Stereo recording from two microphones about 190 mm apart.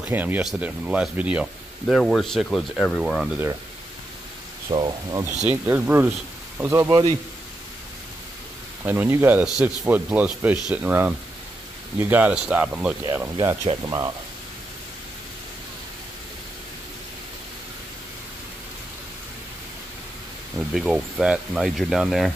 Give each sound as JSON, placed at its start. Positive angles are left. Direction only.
{"t": 0.1, "sound": "speech", "side_deg": -10}
{"t": 4.6, "sound": "speech", "side_deg": -25}
{"t": 5.5, "sound": "speech", "side_deg": -10}
{"t": 8.8, "sound": "speech", "side_deg": -10}
{"t": 20.5, "sound": "speech", "side_deg": -5}